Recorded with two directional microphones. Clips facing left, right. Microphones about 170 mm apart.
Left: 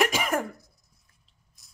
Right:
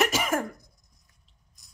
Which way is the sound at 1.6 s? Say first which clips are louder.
Right 2 dB; centre (ahead or behind).